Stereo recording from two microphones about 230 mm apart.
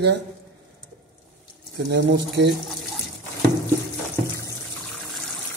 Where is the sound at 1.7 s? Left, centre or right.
Right.